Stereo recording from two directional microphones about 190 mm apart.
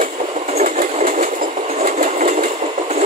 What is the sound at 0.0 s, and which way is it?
Train, 40° right (ahead or behind).